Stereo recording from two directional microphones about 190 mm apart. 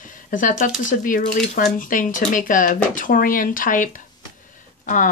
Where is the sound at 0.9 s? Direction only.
45° left (ahead or behind).